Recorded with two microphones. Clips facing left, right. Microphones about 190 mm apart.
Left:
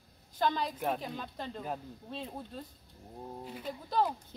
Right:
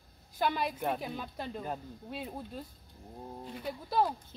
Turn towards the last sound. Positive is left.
turn(degrees=-10)  # may be behind; listen again after turning